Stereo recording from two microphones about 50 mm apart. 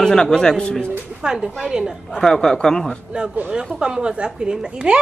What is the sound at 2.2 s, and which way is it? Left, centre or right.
Speech, centre.